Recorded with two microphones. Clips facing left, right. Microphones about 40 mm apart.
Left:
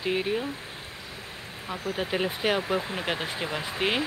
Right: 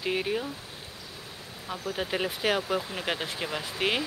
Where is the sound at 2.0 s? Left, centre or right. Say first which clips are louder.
Left 2 dB; centre.